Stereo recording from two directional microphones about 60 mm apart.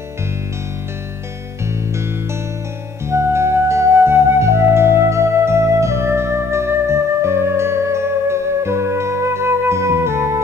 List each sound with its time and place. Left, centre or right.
3.1 s flute: right